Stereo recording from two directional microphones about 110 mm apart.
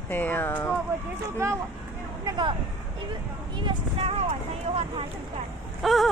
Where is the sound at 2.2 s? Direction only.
45° right (ahead or behind).